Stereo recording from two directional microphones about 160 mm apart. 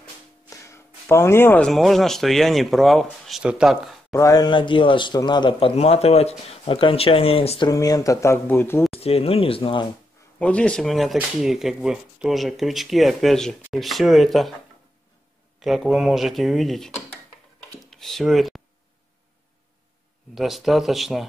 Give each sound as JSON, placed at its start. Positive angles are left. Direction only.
{"t": 0.5, "sound": "a sound", "side_deg": 15}
{"t": 1.7, "sound": "speech", "side_deg": 0}
{"t": 4.1, "sound": "a man's voice", "side_deg": 20}
{"t": 7.7, "sound": "speech", "side_deg": 20}
{"t": 8.9, "sound": "a man's voice", "side_deg": 40}
{"t": 10.4, "sound": "speech", "side_deg": 5}
{"t": 15.6, "sound": "speech", "side_deg": 0}
{"t": 17.8, "sound": "tick-tock", "side_deg": 0}
{"t": 20.3, "sound": "speech", "side_deg": 0}